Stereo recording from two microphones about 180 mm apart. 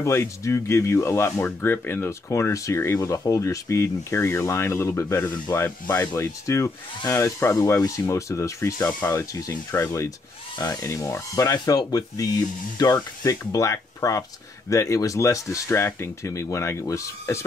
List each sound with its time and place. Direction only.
0.0 s speech: 15° left (ahead or behind)